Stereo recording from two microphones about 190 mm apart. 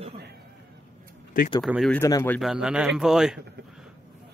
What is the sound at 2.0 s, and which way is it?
Speech, 15° left (ahead or behind).